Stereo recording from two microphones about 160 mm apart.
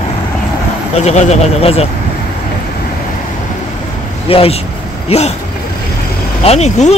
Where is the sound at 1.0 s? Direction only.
45° left (ahead or behind).